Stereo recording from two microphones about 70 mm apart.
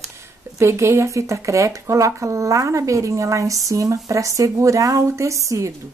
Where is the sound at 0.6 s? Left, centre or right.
Right.